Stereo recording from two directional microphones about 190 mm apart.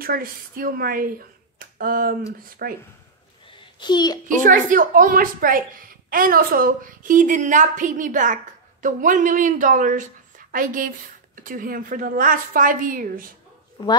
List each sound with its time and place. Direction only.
0.0 s a woman's voice: 50° right (ahead or behind)
3.4 s a sound: 25° left (ahead or behind)
4.4 s a woman's voice: 45° right (ahead or behind)
13.8 s speech: 20° left (ahead or behind)